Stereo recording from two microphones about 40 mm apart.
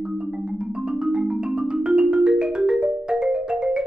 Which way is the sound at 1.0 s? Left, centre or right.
Right.